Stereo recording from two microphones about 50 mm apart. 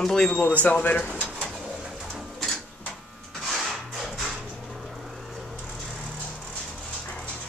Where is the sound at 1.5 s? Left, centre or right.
Centre.